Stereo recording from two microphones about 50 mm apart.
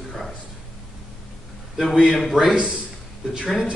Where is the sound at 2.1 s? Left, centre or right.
Centre.